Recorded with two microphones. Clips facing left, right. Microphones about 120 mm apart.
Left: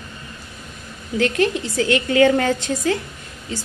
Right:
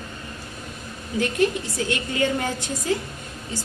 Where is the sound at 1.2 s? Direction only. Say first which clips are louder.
Left 3 dB; 85° left.